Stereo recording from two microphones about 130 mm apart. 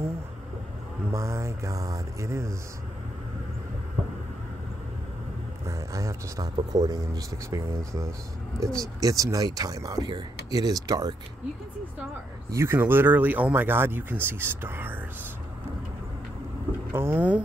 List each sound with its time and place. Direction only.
1.1 s speech: 25° right (ahead or behind)
5.7 s speech: 25° right (ahead or behind)
12.4 s speech: 20° right (ahead or behind)
16.9 s speech: 15° right (ahead or behind)